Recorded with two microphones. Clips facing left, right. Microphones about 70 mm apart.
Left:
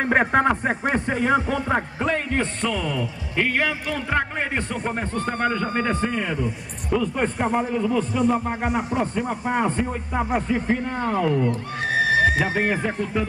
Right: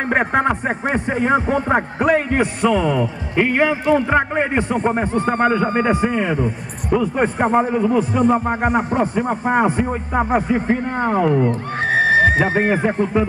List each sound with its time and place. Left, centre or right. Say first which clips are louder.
0.1 s a man's voice: right 2 dB; centre
7.3 s a man's voice: right 6 dB; right
8.2 s a man's voice: right 5 dB; right
11.9 s neigh: right 5 dB; right
12.5 s a man's voice: right 6 dB; right